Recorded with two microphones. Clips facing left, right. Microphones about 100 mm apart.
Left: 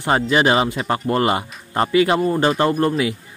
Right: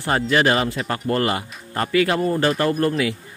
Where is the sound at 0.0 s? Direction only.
20° left (ahead or behind).